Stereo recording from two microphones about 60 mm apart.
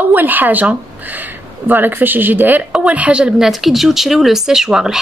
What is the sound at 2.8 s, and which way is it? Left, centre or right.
Speech, right.